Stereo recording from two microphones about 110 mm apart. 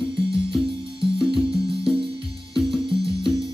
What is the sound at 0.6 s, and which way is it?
Music, 55° right (ahead or behind).